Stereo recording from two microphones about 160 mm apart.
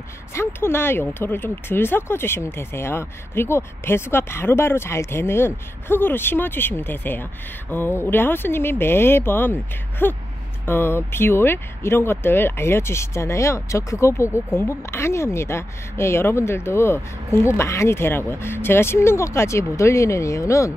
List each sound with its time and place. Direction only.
0.3 s speech: 15° left (ahead or behind)